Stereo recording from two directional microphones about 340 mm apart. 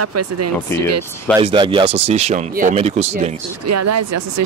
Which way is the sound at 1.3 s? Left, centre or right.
Centre.